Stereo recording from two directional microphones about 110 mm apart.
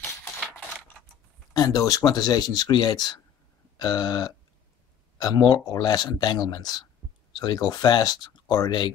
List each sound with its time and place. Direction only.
1.5 s a man's voice: 35° left (ahead or behind)